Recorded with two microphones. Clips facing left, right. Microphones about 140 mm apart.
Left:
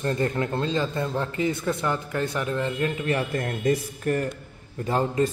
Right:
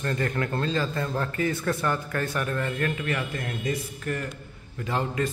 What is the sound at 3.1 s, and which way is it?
A man's voice, 40° left (ahead or behind).